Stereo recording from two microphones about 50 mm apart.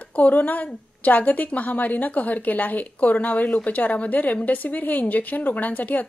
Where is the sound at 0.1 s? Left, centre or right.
Left.